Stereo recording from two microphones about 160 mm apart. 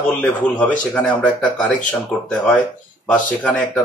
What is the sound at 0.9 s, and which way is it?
Speech, 5° left (ahead or behind).